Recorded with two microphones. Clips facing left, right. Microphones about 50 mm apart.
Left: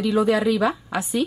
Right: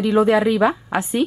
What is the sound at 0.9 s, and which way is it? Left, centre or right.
Speech, right.